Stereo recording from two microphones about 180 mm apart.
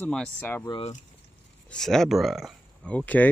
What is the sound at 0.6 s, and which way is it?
Speech, 25° left (ahead or behind).